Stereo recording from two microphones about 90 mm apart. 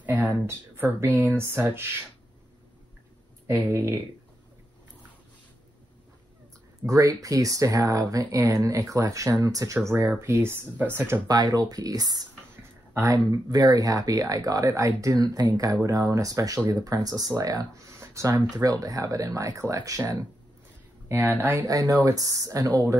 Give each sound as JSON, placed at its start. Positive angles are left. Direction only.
{"t": 0.0, "sound": "speech", "side_deg": -20}
{"t": 3.4, "sound": "speech", "side_deg": -30}
{"t": 6.8, "sound": "speech", "side_deg": -40}
{"t": 11.2, "sound": "speech", "side_deg": -45}
{"t": 21.5, "sound": "speech", "side_deg": -40}